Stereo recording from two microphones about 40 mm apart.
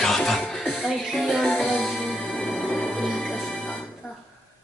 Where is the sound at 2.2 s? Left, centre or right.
Left.